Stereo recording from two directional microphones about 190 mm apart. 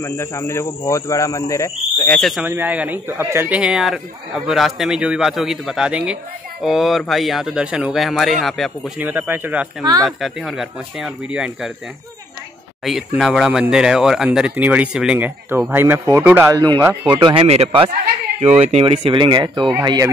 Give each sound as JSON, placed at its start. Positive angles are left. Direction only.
{"t": 0.0, "sound": "speech", "side_deg": 15}
{"t": 2.4, "sound": "speech", "side_deg": -10}
{"t": 12.8, "sound": "speech", "side_deg": 0}